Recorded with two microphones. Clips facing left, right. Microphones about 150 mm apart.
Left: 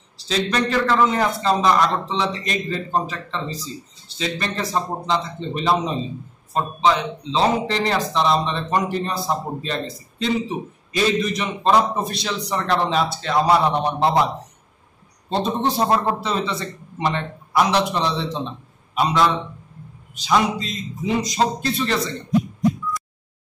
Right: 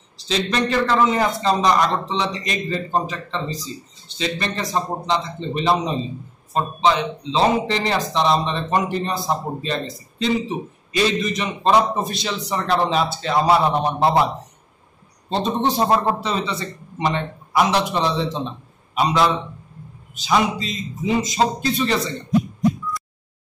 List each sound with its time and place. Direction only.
0.2 s speech: centre (ahead or behind)
15.2 s speech: centre (ahead or behind)